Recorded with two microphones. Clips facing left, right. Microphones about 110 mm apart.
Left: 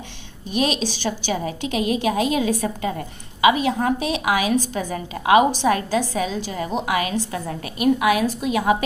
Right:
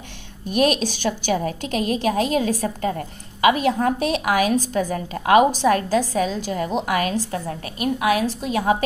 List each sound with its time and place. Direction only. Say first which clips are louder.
0.5 s a woman's voice: right 3 dB; 50° right (ahead or behind)
7.8 s a woman's voice: left 2 dB; 35° right (ahead or behind)